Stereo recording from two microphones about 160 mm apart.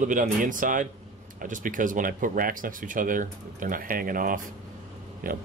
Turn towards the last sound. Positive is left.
turn(degrees=-60)  # may be behind; listen again after turning